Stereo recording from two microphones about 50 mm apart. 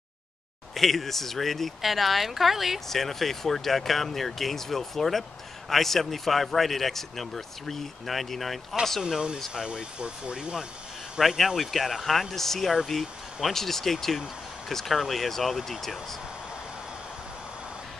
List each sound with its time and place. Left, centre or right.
0.7 s speech: centre
9.0 s speech: centre
11.1 s speech: centre